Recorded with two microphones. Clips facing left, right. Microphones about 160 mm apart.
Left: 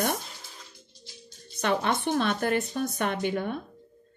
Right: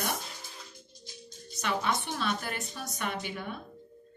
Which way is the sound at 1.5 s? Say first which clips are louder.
Left 5 dB; 55° left (ahead or behind).